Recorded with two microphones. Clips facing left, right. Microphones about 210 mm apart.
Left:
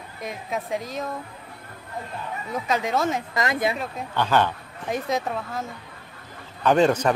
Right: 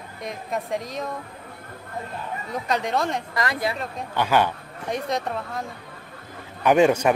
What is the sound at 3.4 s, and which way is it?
Speech, 20° left (ahead or behind).